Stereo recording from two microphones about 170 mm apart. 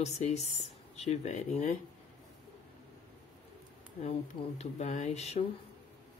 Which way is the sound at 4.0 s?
40° left (ahead or behind).